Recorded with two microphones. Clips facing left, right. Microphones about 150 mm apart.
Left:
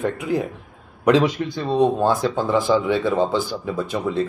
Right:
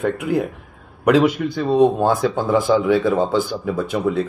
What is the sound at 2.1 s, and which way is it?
Speech, 50° right (ahead or behind).